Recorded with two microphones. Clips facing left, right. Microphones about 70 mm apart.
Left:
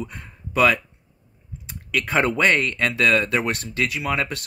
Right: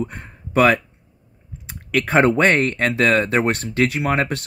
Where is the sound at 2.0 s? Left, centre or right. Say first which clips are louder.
Right 5 dB; right.